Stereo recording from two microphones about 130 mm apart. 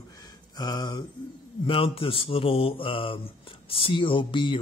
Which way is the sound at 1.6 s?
45° left (ahead or behind).